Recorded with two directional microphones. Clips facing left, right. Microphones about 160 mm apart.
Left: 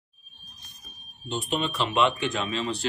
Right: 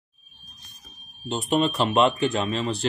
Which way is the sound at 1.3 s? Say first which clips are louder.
Right 6 dB; 40° right (ahead or behind).